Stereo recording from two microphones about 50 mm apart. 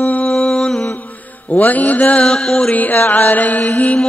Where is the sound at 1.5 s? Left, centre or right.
Left.